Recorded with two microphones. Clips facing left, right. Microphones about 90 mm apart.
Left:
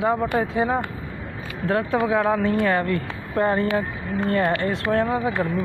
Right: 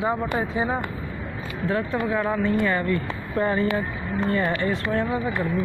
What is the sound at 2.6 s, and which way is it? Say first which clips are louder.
Speech: left 2 dB; 55° left (ahead or behind).